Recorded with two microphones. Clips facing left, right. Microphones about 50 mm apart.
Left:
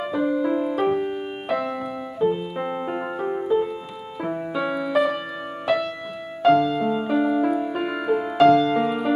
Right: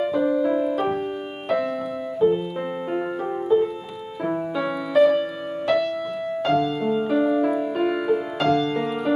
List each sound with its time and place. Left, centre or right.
0.0 s music: centre
2.1 s keyboard: centre
2.9 s music: centre